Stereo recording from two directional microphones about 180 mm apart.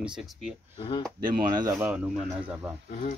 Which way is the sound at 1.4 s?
25° right (ahead or behind).